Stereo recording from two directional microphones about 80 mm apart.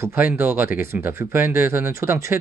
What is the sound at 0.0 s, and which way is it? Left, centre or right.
Speech, right.